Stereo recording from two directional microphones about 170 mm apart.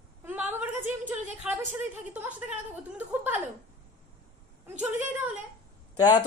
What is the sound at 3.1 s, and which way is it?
Chuckle, 10° right (ahead or behind).